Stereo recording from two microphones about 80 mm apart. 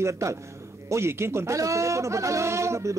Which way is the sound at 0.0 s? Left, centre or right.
Right.